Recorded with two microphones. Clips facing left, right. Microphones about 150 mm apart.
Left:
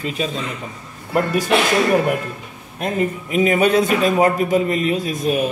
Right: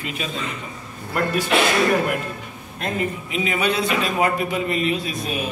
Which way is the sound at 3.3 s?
45° left (ahead or behind).